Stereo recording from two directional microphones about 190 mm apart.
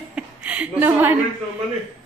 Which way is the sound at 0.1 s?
5° right (ahead or behind).